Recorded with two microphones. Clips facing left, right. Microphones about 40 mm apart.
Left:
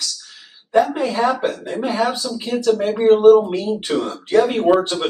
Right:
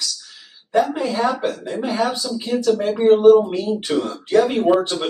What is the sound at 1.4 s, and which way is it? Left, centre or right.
Speech, centre.